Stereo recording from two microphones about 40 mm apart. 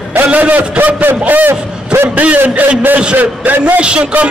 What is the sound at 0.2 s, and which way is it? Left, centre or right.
A man's voice, right.